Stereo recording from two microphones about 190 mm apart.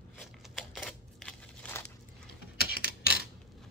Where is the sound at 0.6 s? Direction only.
5° left (ahead or behind).